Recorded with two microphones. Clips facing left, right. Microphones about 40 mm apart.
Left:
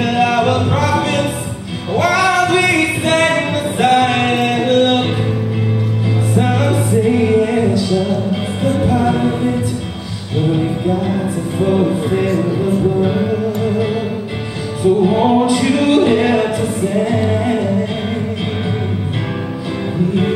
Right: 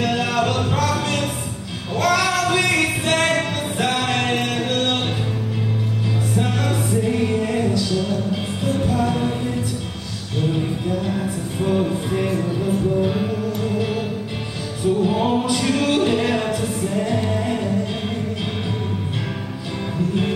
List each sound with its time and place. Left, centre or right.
0.0 s music: centre
6.3 s music: centre